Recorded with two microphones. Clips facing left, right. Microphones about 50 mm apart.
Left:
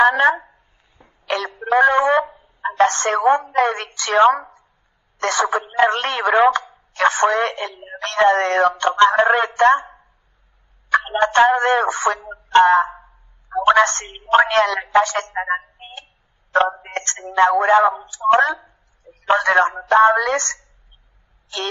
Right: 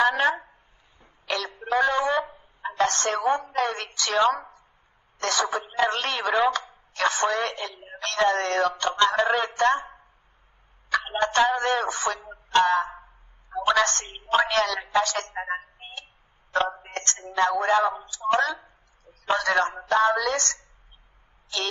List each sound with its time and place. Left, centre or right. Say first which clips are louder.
0.0 s speech: left 7 dB; left
1.0 s a sound: left 6 dB; left
2.7 s a woman's voice: left 7 dB; left
12.5 s a sound: left 8 dB; left
13.5 s a woman's voice: left 8 dB; left
16.5 s a woman's voice: left 8 dB; left